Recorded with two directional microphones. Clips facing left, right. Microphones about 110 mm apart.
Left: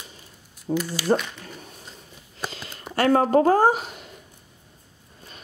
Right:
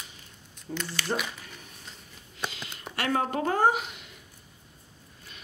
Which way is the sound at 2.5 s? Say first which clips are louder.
Left 4 dB; 40° left (ahead or behind).